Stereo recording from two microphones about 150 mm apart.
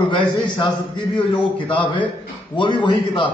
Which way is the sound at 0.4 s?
35° left (ahead or behind).